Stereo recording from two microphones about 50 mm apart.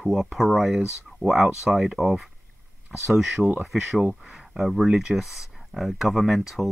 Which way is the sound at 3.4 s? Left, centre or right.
Right.